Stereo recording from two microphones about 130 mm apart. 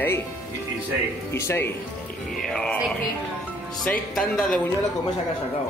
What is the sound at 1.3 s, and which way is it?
Speech, 20° left (ahead or behind).